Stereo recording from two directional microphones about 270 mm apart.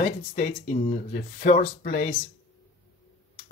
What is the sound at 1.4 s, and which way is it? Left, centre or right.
Speech, left.